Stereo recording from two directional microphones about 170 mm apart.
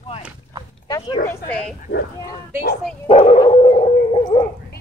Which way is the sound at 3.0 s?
35° left (ahead or behind).